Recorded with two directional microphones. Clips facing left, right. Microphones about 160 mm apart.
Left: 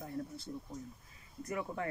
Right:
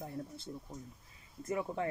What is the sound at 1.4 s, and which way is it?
Speech, 25° right (ahead or behind).